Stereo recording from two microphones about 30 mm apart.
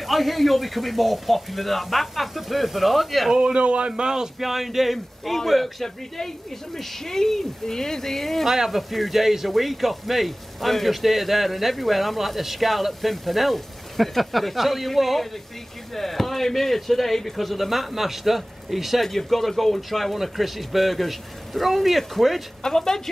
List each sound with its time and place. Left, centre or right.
0.0 s speech: centre
3.5 s speech: right
3.9 s speech: right
4.4 s a man's voice: centre
8.5 s a man's voice: centre
17.4 s speech: centre
19.0 s speech: centre
22.6 s a man's voice: centre